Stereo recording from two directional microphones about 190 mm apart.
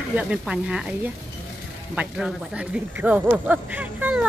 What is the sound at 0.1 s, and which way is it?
A woman's voice, 5° right (ahead or behind).